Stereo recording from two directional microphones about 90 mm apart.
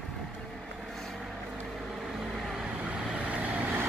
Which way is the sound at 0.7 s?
5° left (ahead or behind).